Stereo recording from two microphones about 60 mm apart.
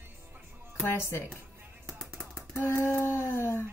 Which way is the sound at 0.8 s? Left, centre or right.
Left.